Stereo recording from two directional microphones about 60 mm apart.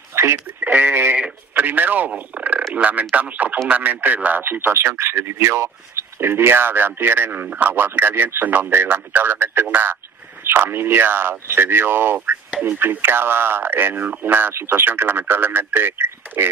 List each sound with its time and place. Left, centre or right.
0.1 s radio: right
0.7 s speech: right